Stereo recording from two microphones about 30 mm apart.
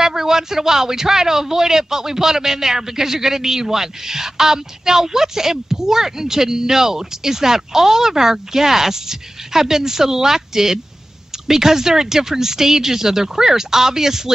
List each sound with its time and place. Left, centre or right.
0.0 s a man's voice: centre